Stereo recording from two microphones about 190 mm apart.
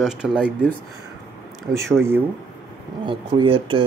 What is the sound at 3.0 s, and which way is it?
Mantra, 25° right (ahead or behind).